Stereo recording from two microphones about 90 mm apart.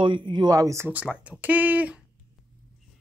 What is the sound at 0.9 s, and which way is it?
Speech, 15° right (ahead or behind).